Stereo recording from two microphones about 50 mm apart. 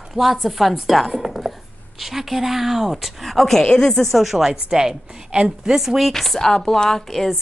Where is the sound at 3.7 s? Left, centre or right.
Centre.